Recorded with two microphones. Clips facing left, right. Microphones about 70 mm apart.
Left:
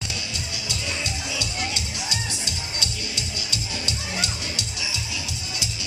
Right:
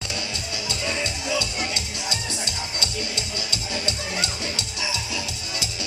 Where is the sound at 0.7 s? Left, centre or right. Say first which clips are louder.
Right 4 dB; right.